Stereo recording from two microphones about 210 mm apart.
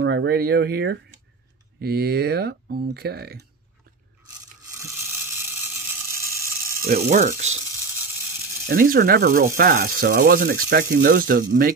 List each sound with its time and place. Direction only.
0.0 s speech: 55° right (ahead or behind)
4.6 s ratchet: 15° right (ahead or behind)
6.8 s speech: 45° right (ahead or behind)
8.6 s speech: 45° right (ahead or behind)